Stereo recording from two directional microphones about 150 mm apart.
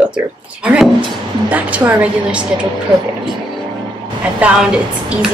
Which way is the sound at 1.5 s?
10° right (ahead or behind).